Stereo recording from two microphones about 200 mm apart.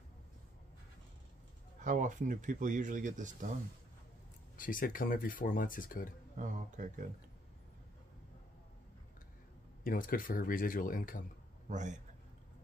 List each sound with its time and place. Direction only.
1.9 s speech: 40° right (ahead or behind)
4.6 s speech: 45° left (ahead or behind)
6.3 s speech: 40° right (ahead or behind)
9.8 s speech: 45° left (ahead or behind)
11.7 s speech: 35° right (ahead or behind)